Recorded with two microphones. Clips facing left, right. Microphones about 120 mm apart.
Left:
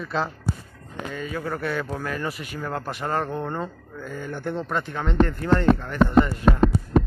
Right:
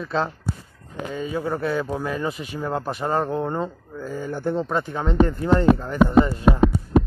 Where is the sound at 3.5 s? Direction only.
25° right (ahead or behind).